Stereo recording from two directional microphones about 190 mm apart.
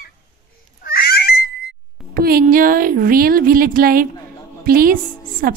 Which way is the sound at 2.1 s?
50° right (ahead or behind).